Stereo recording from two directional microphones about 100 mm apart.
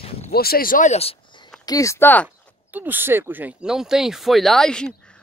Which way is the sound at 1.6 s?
35° left (ahead or behind).